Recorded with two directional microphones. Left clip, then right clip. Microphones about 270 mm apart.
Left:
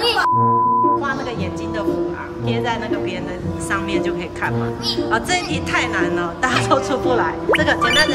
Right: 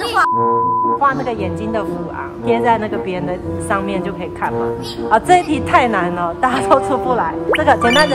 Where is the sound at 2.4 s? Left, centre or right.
Centre.